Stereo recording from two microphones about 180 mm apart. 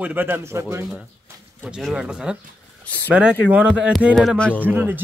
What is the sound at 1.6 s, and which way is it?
A man's voice, 5° right (ahead or behind).